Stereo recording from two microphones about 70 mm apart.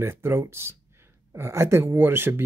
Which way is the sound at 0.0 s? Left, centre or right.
Right.